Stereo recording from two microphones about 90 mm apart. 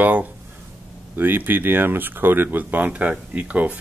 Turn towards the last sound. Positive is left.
turn(degrees=-15)  # may be behind; listen again after turning